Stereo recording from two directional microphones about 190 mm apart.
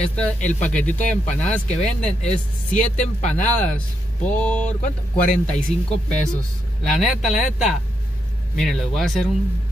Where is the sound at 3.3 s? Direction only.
5° left (ahead or behind).